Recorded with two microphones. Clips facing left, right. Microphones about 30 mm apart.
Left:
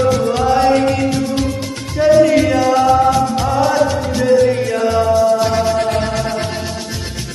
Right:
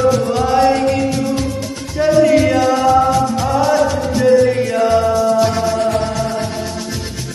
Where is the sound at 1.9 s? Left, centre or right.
Centre.